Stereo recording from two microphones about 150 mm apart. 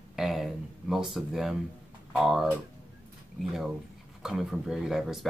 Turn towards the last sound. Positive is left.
turn(degrees=-5)  # may be behind; listen again after turning